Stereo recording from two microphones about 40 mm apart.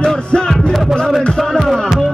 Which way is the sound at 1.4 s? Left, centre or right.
Centre.